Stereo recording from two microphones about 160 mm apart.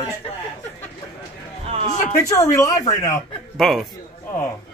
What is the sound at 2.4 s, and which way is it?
Speech, 20° left (ahead or behind).